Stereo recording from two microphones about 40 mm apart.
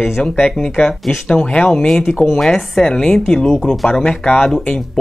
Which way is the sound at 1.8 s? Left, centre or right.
Centre.